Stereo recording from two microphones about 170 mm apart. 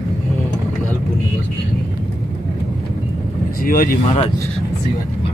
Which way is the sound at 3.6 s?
55° left (ahead or behind).